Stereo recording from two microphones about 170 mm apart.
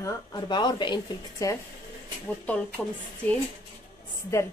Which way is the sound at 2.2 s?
10° left (ahead or behind).